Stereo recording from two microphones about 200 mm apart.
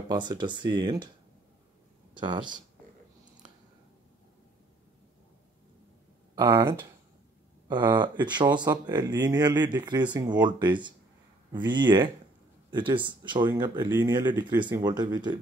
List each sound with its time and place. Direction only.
0.1 s speech: 20° right (ahead or behind)
2.1 s speech: 20° right (ahead or behind)
6.3 s speech: 20° right (ahead or behind)